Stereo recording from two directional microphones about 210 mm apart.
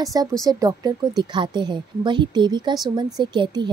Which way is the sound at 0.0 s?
15° right (ahead or behind).